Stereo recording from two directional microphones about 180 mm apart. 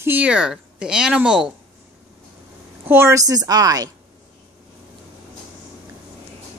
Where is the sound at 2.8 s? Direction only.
15° right (ahead or behind).